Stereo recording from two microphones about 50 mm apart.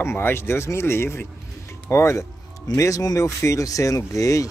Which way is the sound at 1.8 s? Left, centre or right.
Left.